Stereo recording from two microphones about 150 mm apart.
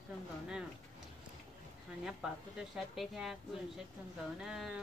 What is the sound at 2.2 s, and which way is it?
Speech, 5° right (ahead or behind).